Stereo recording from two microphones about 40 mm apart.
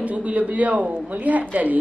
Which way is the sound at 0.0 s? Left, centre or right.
Right.